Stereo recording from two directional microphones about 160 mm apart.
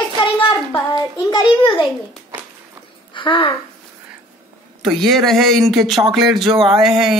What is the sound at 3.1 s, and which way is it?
Speech, 30° left (ahead or behind).